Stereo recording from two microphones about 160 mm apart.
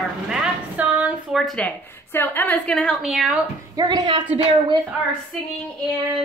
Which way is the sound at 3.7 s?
25° right (ahead or behind).